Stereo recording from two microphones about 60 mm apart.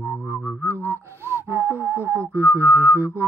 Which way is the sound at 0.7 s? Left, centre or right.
Right.